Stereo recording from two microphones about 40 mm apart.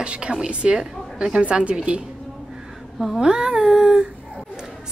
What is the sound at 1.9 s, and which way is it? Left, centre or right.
Speech, right.